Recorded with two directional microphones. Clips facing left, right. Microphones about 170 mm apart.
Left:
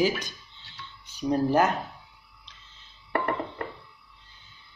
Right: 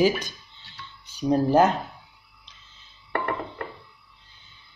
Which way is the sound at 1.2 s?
25° right (ahead or behind).